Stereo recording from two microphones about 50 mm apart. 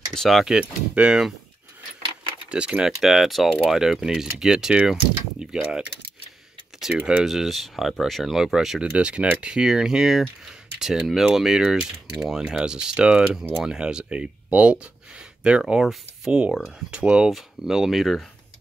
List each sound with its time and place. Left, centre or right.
0.1 s speech: centre
0.5 s speech: right
2.5 s speech: right
3.0 s speech: centre
6.9 s speech: centre
7.2 s speech: centre
8.9 s speech: right
15.6 s speech: centre
16.3 s speech: right
17.6 s speech: centre